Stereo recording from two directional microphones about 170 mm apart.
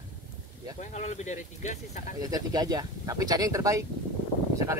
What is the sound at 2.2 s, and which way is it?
Speech, 20° right (ahead or behind).